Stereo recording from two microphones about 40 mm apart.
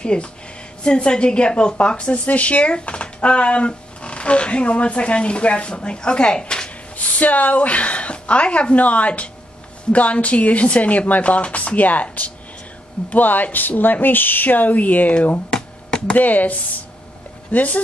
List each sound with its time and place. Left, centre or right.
0.0 s a woman's voice: left
7.0 s speech: left